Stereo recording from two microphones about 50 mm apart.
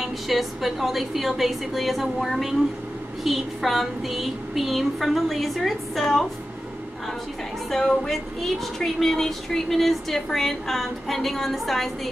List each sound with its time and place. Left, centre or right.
0.0 s child singing: centre
7.7 s speech: centre